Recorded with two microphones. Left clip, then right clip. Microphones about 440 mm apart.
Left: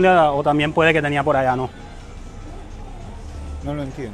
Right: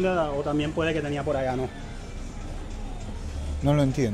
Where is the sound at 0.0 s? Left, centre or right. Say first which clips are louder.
Left 11 dB; left.